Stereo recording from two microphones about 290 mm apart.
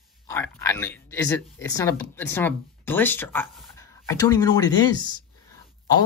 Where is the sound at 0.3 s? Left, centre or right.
Centre.